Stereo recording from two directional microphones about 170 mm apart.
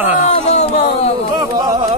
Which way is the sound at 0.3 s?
40° left (ahead or behind).